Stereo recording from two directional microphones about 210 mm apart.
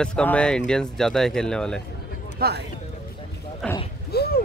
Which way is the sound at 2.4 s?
50° right (ahead or behind).